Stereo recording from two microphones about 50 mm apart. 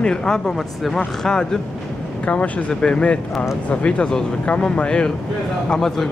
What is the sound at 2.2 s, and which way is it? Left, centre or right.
Speech, left.